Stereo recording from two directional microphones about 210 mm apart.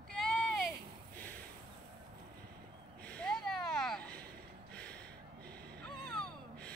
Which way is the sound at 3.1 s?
5° left (ahead or behind).